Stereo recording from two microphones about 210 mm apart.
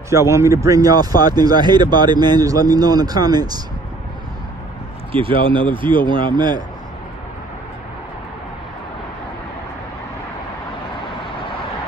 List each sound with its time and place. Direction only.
0.1 s speech: 15° right (ahead or behind)
5.1 s speech: 25° right (ahead or behind)